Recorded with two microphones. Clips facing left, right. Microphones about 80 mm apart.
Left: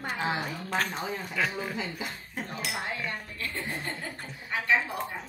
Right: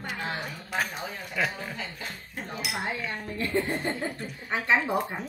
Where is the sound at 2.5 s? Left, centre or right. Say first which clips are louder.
Right 3 dB; centre.